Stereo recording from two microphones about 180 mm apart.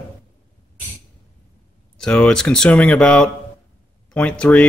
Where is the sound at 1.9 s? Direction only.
5° left (ahead or behind).